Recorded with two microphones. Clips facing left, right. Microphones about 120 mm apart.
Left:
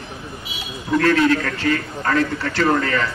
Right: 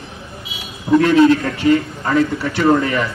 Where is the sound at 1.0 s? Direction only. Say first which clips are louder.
Right 4 dB; 20° right (ahead or behind).